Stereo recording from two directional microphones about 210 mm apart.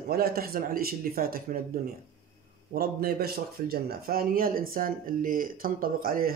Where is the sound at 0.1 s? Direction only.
45° right (ahead or behind).